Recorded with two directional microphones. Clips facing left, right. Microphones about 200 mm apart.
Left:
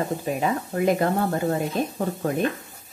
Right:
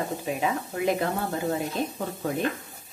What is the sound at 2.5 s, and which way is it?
Sizzle, centre (ahead or behind).